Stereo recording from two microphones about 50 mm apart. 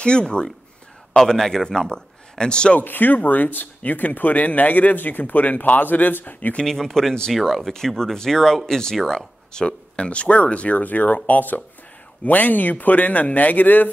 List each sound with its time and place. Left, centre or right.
0.0 s speech: centre
2.8 s speech: left
6.6 s speech: centre; by 13.8 s left